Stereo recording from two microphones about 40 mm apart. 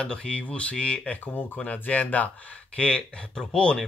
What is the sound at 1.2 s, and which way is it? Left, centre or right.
Speech, left.